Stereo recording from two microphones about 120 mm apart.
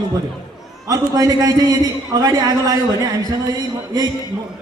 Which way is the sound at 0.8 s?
30° right (ahead or behind).